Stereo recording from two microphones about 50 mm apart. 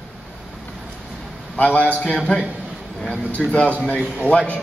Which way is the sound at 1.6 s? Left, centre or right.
Left.